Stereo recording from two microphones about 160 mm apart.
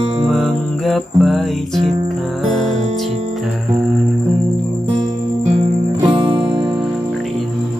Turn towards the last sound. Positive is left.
turn(degrees=-35)  # may be behind; listen again after turning